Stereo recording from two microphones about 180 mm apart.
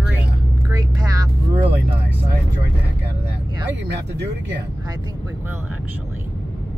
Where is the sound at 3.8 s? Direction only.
70° right (ahead or behind).